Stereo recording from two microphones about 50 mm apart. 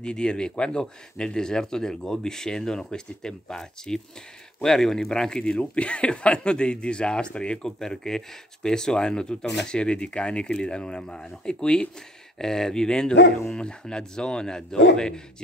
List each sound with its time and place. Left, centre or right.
0.0 s speech: centre